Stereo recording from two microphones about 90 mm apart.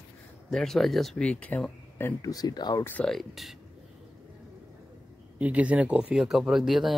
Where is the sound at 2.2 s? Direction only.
45° left (ahead or behind).